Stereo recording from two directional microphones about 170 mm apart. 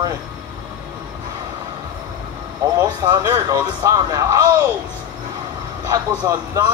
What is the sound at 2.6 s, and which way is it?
Speech, 20° right (ahead or behind).